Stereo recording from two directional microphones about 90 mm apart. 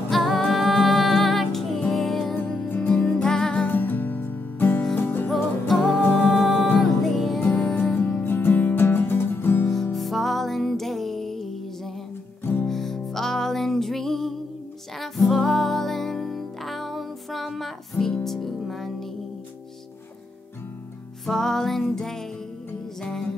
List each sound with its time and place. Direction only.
0.1 s music: centre (ahead or behind)
2.3 s music: 20° left (ahead or behind)
3.6 s music: 20° left (ahead or behind)
6.3 s music: centre (ahead or behind)
7.3 s music: 20° left (ahead or behind)
9.9 s music: centre (ahead or behind)
21.3 s music: 5° left (ahead or behind)